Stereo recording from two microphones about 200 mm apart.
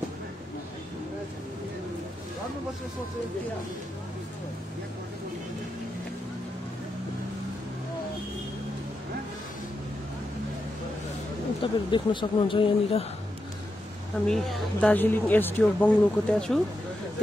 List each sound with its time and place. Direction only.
11.6 s speech: 25° left (ahead or behind)
14.2 s speech: 5° left (ahead or behind)